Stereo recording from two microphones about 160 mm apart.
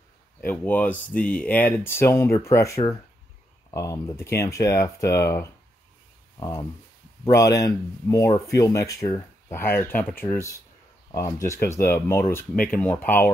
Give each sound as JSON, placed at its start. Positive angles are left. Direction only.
{"t": 0.5, "sound": "speech", "side_deg": 10}